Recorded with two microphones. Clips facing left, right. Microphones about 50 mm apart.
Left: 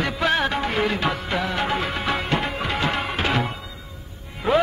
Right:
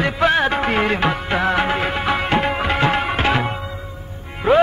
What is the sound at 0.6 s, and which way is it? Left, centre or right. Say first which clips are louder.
Music: right 4 dB; right.